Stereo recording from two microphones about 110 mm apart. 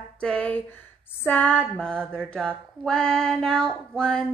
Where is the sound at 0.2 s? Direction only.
10° left (ahead or behind).